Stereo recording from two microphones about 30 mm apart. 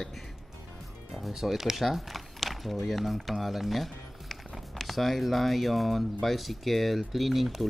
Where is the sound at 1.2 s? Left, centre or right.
Centre.